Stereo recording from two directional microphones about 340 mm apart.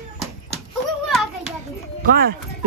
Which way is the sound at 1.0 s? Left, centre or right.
Centre.